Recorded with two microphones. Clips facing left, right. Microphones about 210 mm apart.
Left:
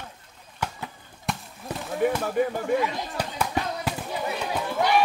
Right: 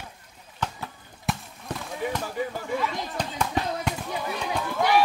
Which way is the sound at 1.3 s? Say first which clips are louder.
Right 1 dB; centre (ahead or behind).